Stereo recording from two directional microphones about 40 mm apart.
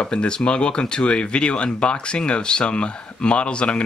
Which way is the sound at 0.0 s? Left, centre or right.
Left.